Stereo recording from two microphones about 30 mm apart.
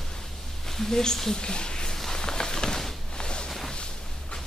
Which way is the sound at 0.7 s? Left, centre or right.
Centre.